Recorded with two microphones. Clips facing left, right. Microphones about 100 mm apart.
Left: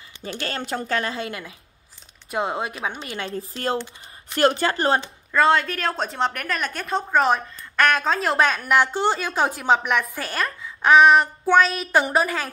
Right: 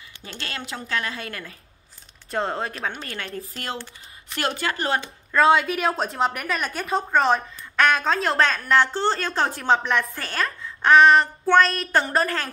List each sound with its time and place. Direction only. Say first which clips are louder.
0.5 s a woman's voice: left 4 dB; 35° left (ahead or behind); by 3.0 s 10° left (ahead or behind)
3.0 s a woman's voice: left 3 dB; 20° left (ahead or behind)
3.3 s a woman's voice: left 10 dB; 30° left (ahead or behind)
5.3 s a woman's voice: right 1 dB; centre (ahead or behind)